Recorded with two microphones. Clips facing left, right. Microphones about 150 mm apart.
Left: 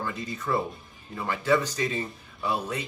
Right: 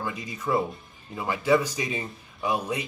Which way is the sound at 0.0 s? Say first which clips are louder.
Right 1 dB; 10° right (ahead or behind).